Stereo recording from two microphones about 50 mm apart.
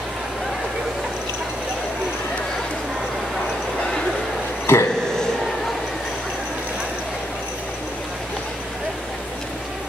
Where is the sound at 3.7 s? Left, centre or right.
Centre.